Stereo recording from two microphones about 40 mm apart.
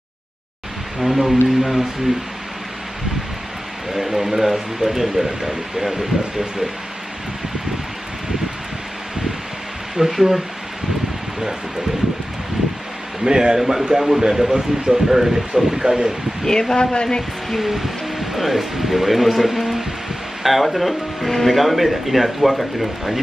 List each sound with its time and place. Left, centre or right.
0.9 s speech: centre
3.9 s speech: centre
9.9 s speech: centre
13.2 s speech: centre
16.4 s speech: centre
17.5 s speech: centre